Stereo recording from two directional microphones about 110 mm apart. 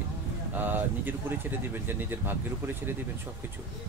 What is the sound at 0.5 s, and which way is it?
Speech, 15° right (ahead or behind).